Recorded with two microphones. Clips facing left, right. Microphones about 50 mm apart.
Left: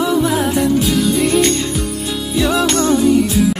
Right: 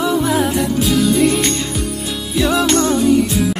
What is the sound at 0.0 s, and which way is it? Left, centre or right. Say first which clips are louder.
Music: left 1 dB; centre.